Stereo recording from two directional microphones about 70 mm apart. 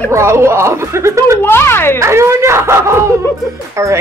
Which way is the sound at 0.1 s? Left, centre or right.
Right.